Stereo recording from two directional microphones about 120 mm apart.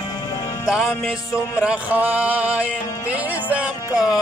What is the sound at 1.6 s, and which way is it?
Music, 10° right (ahead or behind).